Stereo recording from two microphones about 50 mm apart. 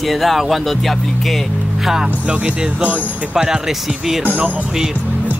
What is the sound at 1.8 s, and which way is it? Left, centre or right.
Speech, centre.